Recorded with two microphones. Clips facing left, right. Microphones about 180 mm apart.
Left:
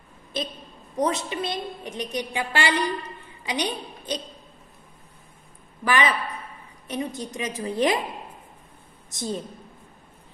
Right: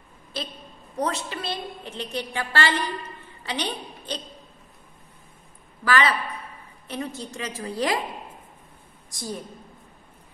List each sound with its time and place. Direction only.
0.3 s a woman's voice: 20° left (ahead or behind)
5.9 s a woman's voice: 20° left (ahead or behind)
9.1 s a woman's voice: 20° left (ahead or behind)